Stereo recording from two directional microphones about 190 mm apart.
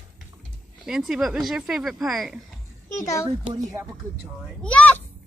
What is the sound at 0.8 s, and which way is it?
Speech, 5° right (ahead or behind).